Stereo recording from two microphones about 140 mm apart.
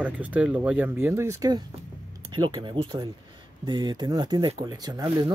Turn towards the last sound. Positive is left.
turn(degrees=-30)  # may be behind; listen again after turning